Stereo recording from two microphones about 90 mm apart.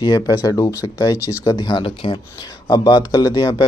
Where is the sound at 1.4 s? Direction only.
55° left (ahead or behind).